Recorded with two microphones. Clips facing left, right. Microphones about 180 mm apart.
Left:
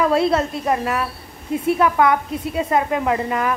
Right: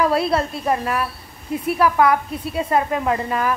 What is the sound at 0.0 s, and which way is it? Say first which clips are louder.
A woman's voice: left 2 dB; 25° left (ahead or behind).